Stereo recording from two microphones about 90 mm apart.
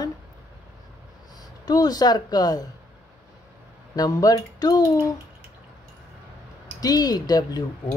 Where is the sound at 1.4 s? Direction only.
45° left (ahead or behind).